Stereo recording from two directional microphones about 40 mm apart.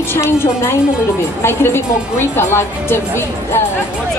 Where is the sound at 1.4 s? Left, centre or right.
Left.